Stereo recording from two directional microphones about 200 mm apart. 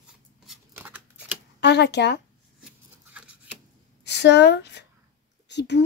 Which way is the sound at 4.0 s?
60° left (ahead or behind).